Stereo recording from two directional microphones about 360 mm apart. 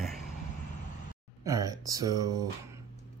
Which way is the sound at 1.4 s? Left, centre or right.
Centre.